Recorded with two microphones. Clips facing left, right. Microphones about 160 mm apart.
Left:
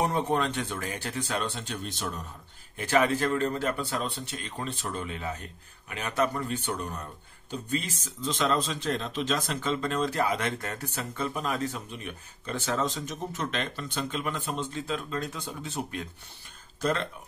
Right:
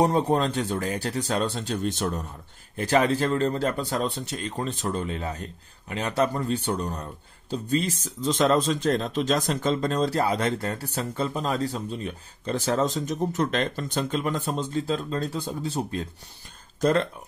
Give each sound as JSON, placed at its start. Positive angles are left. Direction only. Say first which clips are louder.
{"t": 0.0, "sound": "speech", "louder": "right 5 dB", "side_deg": -35}
{"t": 2.8, "sound": "speech", "louder": "right 3 dB", "side_deg": -35}